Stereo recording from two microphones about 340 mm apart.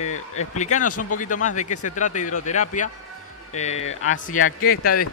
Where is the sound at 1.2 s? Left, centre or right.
Left.